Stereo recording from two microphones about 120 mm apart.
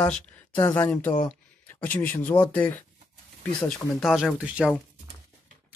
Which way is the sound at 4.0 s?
Centre (ahead or behind).